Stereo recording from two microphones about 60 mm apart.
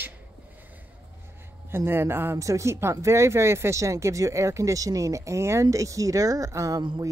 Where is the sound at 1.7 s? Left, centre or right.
Right.